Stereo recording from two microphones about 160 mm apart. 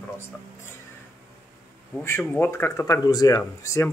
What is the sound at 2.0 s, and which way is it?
Speech, 15° left (ahead or behind).